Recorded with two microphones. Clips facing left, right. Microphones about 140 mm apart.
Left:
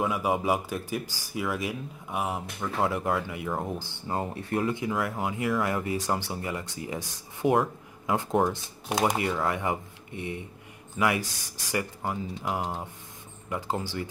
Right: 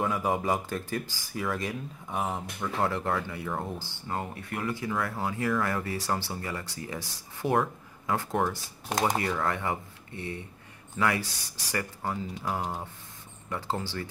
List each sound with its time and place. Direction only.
0.0 s speech: 5° left (ahead or behind)
3.6 s speech: 20° left (ahead or behind)